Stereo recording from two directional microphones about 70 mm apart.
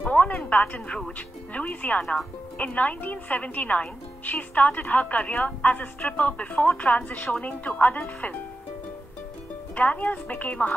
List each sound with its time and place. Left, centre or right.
0.0 s a sound: left
1.1 s a woman's voice: left
9.8 s a woman's voice: left